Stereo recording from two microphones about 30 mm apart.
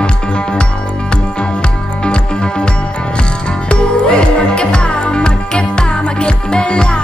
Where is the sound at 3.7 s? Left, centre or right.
Left.